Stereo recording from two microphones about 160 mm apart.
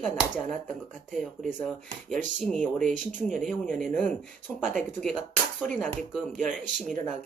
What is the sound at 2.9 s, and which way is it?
Speech, 50° right (ahead or behind).